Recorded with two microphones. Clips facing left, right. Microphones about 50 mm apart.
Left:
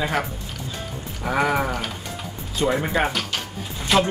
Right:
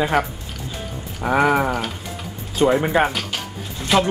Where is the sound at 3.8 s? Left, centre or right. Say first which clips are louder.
Right 1 dB; centre.